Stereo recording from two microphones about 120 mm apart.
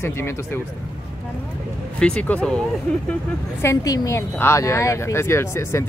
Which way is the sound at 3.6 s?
25° left (ahead or behind).